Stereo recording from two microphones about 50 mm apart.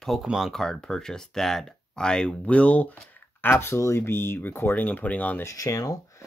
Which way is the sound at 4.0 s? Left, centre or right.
Left.